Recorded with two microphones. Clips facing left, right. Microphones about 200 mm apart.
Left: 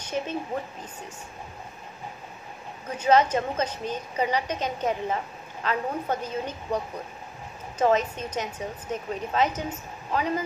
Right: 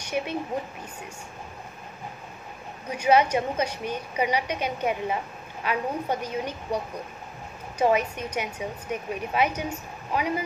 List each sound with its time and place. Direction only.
0.1 s a woman's voice: 15° right (ahead or behind)
2.9 s a woman's voice: 10° right (ahead or behind)
7.8 s a woman's voice: 10° right (ahead or behind)